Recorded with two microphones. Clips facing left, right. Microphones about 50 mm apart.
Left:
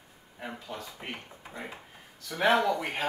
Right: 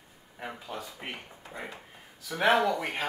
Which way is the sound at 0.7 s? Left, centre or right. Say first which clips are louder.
Right 2 dB; centre.